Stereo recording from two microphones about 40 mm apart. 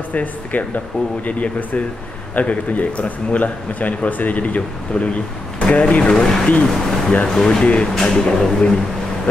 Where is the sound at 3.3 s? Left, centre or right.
Left.